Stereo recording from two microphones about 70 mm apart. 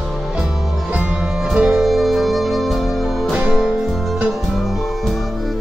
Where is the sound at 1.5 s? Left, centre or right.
Centre.